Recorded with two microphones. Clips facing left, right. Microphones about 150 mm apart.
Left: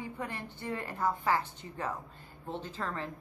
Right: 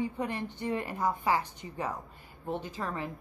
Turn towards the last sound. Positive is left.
turn(degrees=-15)  # may be behind; listen again after turning